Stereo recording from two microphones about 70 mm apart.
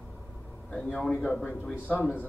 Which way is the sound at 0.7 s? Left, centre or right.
Centre.